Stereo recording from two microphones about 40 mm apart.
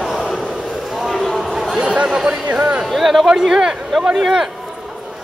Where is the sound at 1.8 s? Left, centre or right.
Right.